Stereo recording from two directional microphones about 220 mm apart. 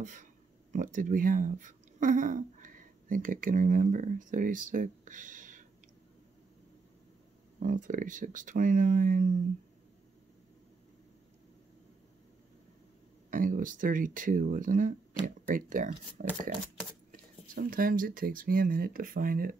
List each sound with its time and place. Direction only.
0.0 s speech: 35° right (ahead or behind)
7.6 s speech: 35° right (ahead or behind)
13.3 s speech: 40° right (ahead or behind)